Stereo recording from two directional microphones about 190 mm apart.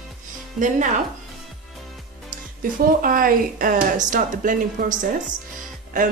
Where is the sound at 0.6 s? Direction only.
40° right (ahead or behind).